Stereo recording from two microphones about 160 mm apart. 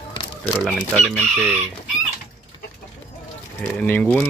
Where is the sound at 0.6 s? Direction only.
Centre (ahead or behind).